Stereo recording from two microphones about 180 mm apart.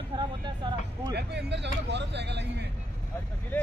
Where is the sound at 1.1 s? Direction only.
70° right (ahead or behind).